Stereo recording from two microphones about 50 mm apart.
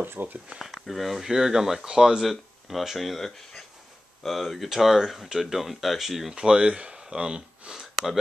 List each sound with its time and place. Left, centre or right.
0.0 s speech: right
0.6 s speech: centre
6.3 s speech: centre